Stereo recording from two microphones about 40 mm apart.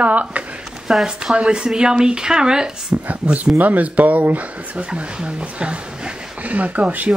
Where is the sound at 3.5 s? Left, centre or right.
Right.